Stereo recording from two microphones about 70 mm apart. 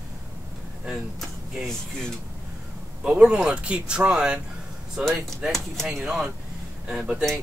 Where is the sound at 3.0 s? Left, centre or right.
Centre.